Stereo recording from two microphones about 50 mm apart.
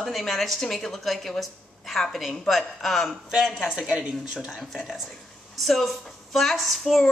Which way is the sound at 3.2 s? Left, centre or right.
Centre.